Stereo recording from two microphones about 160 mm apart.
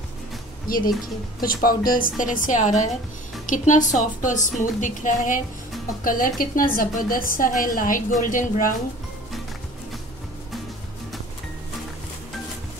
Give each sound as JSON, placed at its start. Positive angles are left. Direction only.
{"t": 0.7, "sound": "a woman's voice", "side_deg": 65}